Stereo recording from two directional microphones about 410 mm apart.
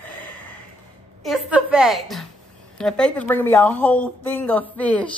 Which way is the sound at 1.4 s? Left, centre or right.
Centre.